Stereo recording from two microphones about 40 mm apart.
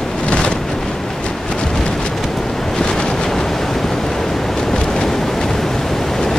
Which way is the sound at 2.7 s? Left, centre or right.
Centre.